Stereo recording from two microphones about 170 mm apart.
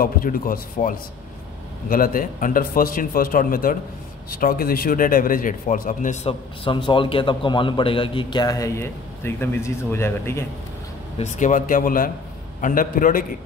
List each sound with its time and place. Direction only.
0.0 s a man's voice: 55° left (ahead or behind)
6.2 s a man's voice: 30° left (ahead or behind); by 10.4 s 15° left (ahead or behind)
11.1 s speech: 45° left (ahead or behind)